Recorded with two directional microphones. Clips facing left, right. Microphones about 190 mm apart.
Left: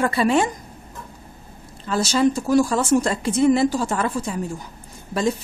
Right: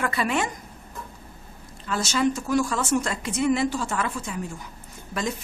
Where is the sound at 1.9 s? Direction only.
35° left (ahead or behind).